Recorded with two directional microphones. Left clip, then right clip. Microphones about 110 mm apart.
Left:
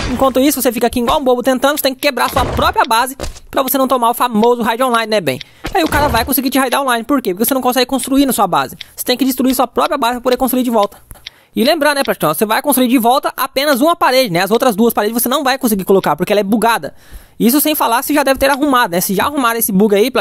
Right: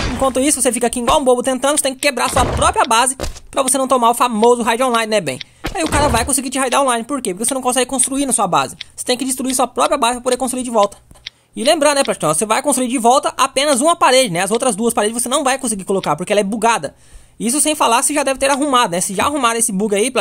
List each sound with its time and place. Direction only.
0.0 s music: centre (ahead or behind)
0.3 s speech: 30° left (ahead or behind)
2.3 s speech: centre (ahead or behind)
2.6 s speech: 40° left (ahead or behind)
7.9 s speech: 25° left (ahead or behind)
11.5 s speech: 50° left (ahead or behind)